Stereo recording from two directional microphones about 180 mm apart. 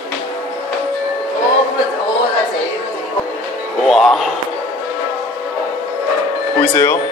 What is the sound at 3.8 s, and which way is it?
Music, centre (ahead or behind).